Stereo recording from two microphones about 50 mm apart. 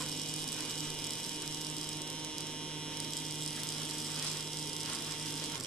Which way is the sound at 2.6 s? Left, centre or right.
Centre.